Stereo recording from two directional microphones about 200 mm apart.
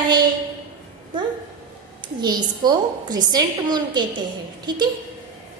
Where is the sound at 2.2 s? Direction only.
20° right (ahead or behind).